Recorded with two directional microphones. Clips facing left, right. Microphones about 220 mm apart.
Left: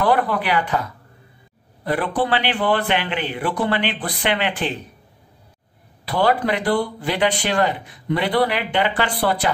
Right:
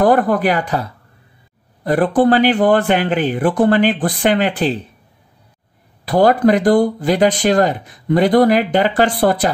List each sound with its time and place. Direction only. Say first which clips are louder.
0.0 s speech: right 6 dB; 45° right (ahead or behind)
6.0 s speech: right 7 dB; 45° right (ahead or behind)